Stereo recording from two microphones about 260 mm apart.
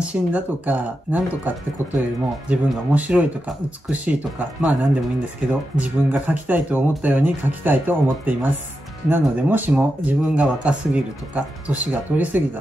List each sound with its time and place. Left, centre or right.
0.0 s speech: centre